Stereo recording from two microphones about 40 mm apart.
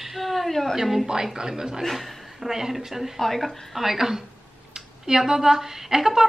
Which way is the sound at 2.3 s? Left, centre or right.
Centre.